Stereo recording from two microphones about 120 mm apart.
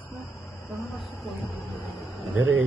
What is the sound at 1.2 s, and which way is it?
Speech, centre (ahead or behind).